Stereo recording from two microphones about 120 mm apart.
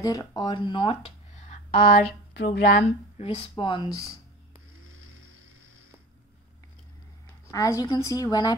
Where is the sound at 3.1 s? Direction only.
60° left (ahead or behind).